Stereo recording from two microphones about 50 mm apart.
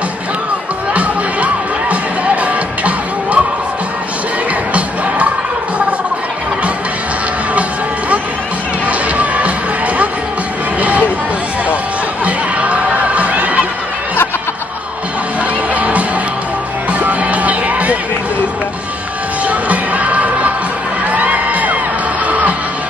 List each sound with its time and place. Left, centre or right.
0.9 s music: right
8.8 s music: right
10.8 s a sound: right
12.3 s a sound: right
15.7 s music: right
17.0 s music: right
19.4 s music: right
21.1 s crowd: right